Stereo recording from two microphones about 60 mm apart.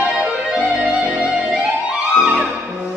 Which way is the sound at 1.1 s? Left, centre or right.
Centre.